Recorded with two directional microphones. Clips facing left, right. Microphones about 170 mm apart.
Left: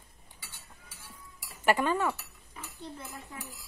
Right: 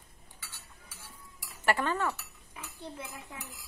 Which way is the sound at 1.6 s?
15° left (ahead or behind).